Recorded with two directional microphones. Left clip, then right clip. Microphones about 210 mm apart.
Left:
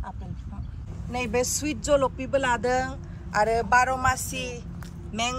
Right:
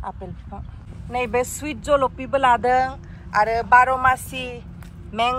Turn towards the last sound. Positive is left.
turn(degrees=5)  # may be behind; listen again after turning